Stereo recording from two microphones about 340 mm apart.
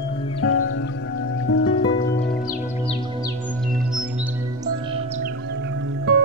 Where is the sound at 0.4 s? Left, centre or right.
Left.